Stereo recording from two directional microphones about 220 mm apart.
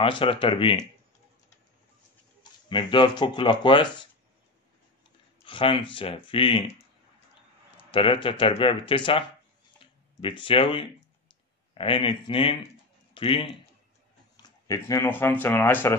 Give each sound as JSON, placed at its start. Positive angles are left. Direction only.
{"t": 0.0, "sound": "speech", "side_deg": 25}
{"t": 2.7, "sound": "speech", "side_deg": 20}
{"t": 5.4, "sound": "speech", "side_deg": 25}
{"t": 7.7, "sound": "speech", "side_deg": 25}
{"t": 9.8, "sound": "a sound", "side_deg": 20}
{"t": 11.7, "sound": "speech", "side_deg": 25}